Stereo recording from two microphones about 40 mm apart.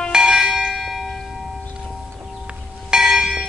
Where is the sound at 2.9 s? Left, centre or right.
Centre.